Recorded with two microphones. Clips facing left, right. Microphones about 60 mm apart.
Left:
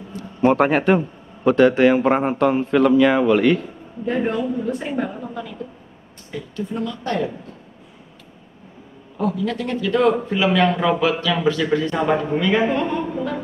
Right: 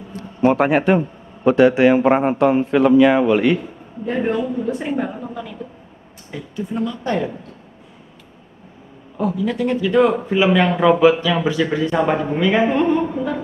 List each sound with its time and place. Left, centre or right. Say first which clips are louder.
0.6 s a man's voice: right 1 dB; centre
4.2 s speech: right 3 dB; right
4.9 s a sound: right 1 dB; centre
6.3 s a man's voice: right 1 dB; centre
9.2 s a man's voice: right 2 dB; centre
12.1 s a man's voice: right 1 dB; centre